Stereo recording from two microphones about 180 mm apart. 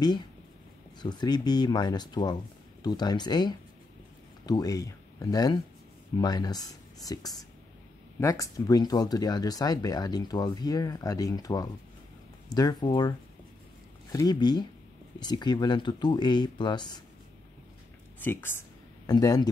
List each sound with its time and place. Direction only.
1.0 s speech: 25° left (ahead or behind)
14.1 s speech: 25° left (ahead or behind)
18.2 s speech: 10° left (ahead or behind)